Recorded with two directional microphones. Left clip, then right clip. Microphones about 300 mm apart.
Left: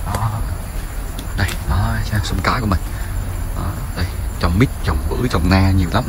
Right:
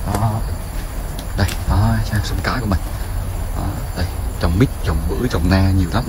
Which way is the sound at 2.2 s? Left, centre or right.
Centre.